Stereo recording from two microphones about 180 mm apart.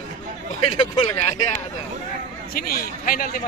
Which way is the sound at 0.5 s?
35° left (ahead or behind).